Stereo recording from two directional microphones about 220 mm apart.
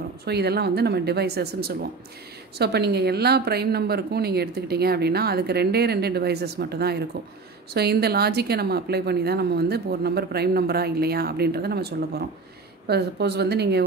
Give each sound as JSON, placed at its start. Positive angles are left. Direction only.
{"t": 0.2, "sound": "a woman's voice", "side_deg": -45}